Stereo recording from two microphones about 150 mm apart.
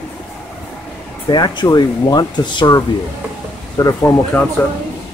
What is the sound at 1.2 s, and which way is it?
Speech, 30° left (ahead or behind).